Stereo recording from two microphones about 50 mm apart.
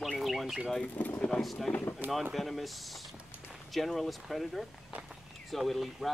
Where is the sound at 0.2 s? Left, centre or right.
Centre.